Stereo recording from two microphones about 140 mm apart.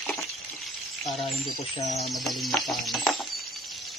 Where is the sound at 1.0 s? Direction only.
Centre (ahead or behind).